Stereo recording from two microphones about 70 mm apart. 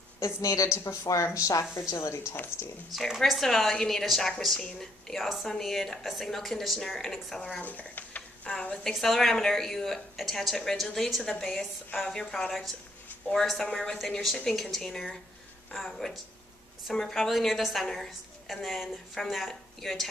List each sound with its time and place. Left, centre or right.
0.2 s a woman's voice: left
2.9 s speech: centre
7.4 s speech: left
8.5 s speech: centre